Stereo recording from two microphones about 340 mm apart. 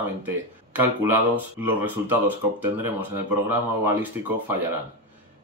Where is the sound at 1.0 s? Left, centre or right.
Centre.